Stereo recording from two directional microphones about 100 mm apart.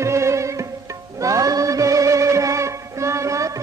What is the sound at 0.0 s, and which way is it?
Music, 30° right (ahead or behind).